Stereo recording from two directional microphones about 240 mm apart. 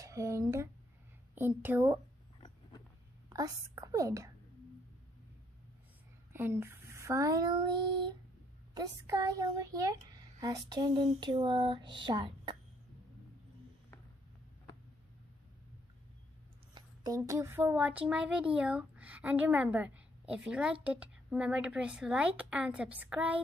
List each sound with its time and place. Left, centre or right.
0.0 s speech: centre
3.3 s a woman's voice: centre
6.3 s speech: centre
8.7 s speech: centre
16.7 s a woman's voice: centre